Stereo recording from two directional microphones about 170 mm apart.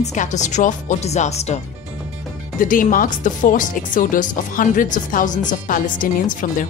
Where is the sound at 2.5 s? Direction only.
55° left (ahead or behind).